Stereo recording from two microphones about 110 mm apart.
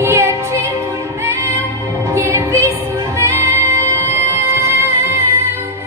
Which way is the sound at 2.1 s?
25° right (ahead or behind).